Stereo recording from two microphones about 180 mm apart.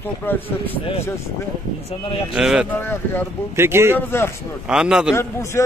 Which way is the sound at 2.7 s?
10° left (ahead or behind).